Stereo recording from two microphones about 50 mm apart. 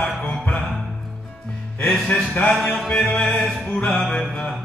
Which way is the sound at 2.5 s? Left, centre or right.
Centre.